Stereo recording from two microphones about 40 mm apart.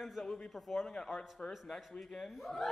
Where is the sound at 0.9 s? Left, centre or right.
Left.